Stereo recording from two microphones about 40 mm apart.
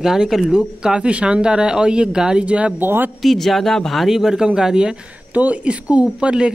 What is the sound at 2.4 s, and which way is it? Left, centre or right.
Speech, right.